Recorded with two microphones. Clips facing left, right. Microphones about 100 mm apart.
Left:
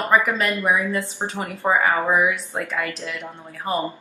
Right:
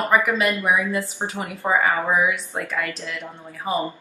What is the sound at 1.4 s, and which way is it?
Speech, 15° left (ahead or behind).